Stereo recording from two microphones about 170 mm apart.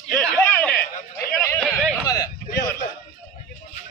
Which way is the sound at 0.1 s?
10° left (ahead or behind).